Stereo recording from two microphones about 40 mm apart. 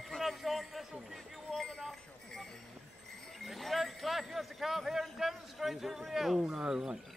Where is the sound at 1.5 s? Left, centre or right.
Centre.